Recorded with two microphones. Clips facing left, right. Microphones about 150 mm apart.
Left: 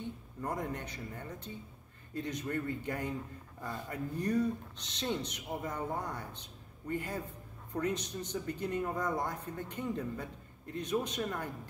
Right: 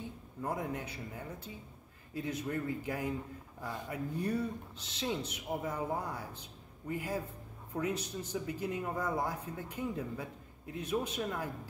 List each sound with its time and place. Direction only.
0.4 s speech: 5° right (ahead or behind)